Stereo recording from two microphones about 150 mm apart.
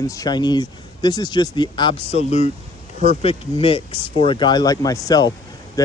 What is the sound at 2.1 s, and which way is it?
Speech, 45° left (ahead or behind).